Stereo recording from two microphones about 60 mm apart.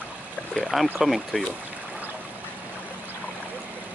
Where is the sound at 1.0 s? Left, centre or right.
Centre.